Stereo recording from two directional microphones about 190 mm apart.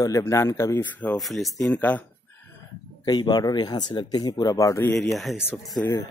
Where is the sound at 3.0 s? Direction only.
20° left (ahead or behind).